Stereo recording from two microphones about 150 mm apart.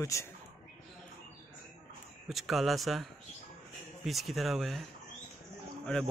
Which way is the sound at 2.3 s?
Centre (ahead or behind).